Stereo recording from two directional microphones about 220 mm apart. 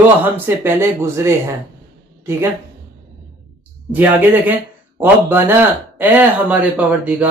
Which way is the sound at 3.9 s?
10° right (ahead or behind).